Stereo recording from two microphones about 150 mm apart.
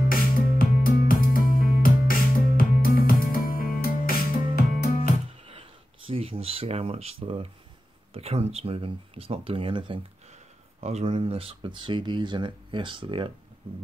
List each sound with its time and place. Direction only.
0.1 s music: 75° left (ahead or behind)
5.5 s a sound: 40° right (ahead or behind)
8.1 s speech: 45° right (ahead or behind)